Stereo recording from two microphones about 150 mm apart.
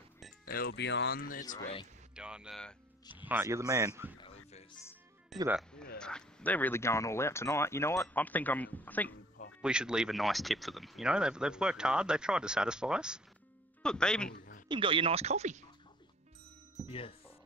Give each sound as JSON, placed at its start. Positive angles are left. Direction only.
{"t": 0.5, "sound": "speech", "side_deg": 85}
{"t": 2.1, "sound": "a man's voice", "side_deg": -5}
{"t": 4.2, "sound": "music", "side_deg": 45}
{"t": 5.3, "sound": "speech", "side_deg": 0}
{"t": 9.6, "sound": "speech", "side_deg": -5}
{"t": 13.8, "sound": "speech", "side_deg": 5}
{"t": 14.3, "sound": "a sound", "side_deg": 90}
{"t": 14.7, "sound": "speech", "side_deg": -35}
{"t": 16.8, "sound": "speech", "side_deg": 35}